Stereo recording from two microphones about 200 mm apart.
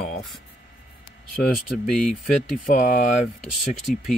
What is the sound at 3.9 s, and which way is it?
Speech, 45° left (ahead or behind).